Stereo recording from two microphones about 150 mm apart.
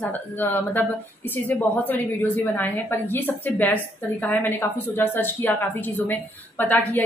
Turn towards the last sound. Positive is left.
turn(degrees=10)  # may be behind; listen again after turning